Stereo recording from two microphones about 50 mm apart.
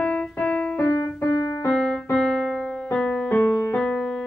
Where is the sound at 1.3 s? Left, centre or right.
Left.